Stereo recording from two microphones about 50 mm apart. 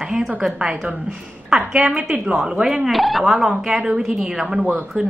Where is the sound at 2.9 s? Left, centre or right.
Centre.